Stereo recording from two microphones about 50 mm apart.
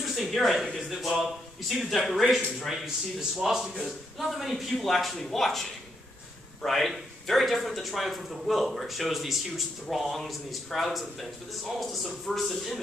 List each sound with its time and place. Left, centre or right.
0.0 s a man's voice: centre
3.2 s a man's voice: centre